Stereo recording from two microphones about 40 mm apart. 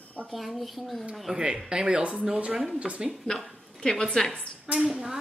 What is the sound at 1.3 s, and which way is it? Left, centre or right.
A woman's voice, centre.